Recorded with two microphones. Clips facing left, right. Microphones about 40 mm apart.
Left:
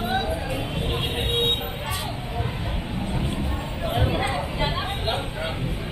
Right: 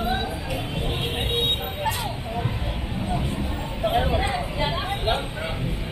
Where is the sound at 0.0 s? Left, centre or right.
Left.